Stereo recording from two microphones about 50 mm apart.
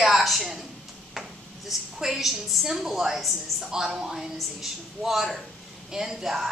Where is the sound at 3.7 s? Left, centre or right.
Centre.